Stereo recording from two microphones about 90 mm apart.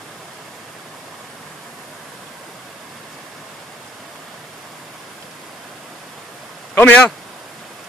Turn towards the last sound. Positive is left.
turn(degrees=15)  # may be behind; listen again after turning